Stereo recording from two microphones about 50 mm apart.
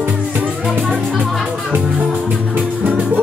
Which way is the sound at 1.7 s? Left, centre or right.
Right.